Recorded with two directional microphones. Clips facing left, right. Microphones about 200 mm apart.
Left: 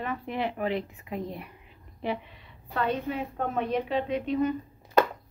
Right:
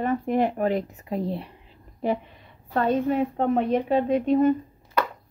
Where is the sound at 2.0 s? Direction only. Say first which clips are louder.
Right 6 dB; 45° right (ahead or behind).